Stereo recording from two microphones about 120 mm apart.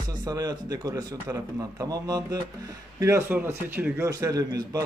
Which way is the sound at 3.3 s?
15° right (ahead or behind).